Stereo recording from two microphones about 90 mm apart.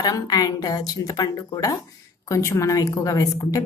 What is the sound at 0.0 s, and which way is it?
A woman's voice, 45° left (ahead or behind).